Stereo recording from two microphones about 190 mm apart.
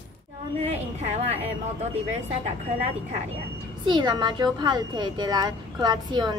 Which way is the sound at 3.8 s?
25° right (ahead or behind).